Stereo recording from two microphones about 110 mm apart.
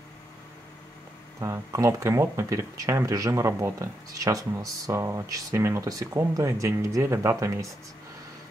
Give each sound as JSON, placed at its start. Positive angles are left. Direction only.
{"t": 1.4, "sound": "speech", "side_deg": -30}